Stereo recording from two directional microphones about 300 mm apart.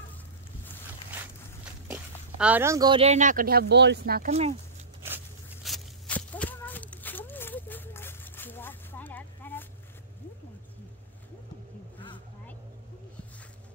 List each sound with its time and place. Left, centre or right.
1.9 s speech: centre; by 4.6 s right
5.0 s walk: centre